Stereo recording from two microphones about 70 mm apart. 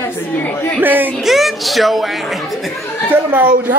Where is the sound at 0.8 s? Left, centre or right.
Right.